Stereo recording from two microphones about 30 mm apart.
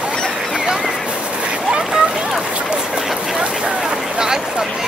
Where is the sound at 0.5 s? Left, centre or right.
Centre.